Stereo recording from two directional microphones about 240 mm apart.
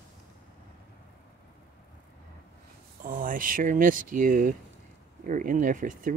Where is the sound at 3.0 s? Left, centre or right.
Right.